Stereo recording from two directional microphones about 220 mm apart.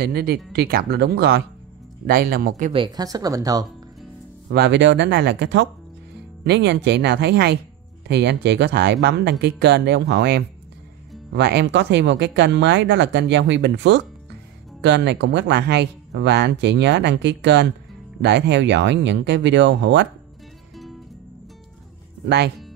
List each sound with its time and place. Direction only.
0.0 s speech: 45° right (ahead or behind)
2.7 s speech: 20° right (ahead or behind)
4.5 s speech: 50° right (ahead or behind)